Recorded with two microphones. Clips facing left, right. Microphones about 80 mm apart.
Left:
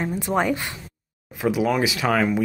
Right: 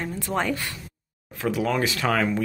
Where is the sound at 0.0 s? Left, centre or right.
Centre.